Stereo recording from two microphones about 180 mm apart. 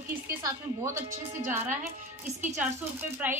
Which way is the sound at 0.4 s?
15° right (ahead or behind).